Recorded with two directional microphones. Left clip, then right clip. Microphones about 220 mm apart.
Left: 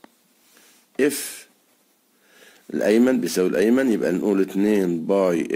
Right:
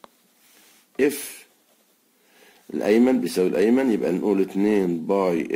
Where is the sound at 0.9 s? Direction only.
30° left (ahead or behind).